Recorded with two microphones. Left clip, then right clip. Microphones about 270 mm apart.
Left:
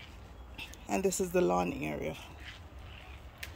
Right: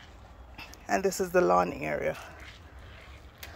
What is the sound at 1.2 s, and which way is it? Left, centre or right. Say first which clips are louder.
Speech: right 7 dB; centre.